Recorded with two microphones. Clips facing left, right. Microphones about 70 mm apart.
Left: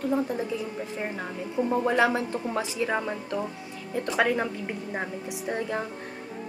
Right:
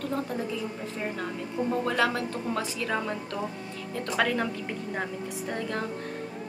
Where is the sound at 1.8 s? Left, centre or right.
Centre.